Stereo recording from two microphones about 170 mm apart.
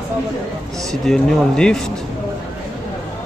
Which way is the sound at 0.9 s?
5° left (ahead or behind).